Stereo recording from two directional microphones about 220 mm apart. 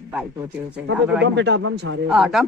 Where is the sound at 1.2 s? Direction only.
55° right (ahead or behind).